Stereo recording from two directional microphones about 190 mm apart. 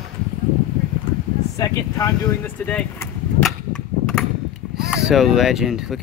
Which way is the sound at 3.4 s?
5° left (ahead or behind).